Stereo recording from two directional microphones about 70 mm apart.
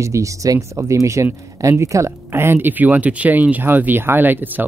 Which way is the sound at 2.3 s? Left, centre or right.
Right.